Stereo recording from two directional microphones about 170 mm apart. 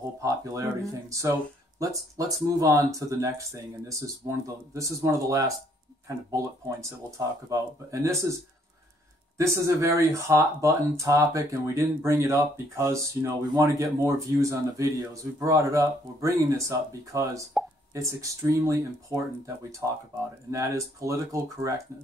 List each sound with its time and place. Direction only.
0.2 s speech: 20° right (ahead or behind)
9.4 s speech: 15° right (ahead or behind)